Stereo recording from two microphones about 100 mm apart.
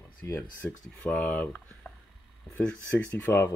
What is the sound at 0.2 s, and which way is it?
Speech, 20° left (ahead or behind).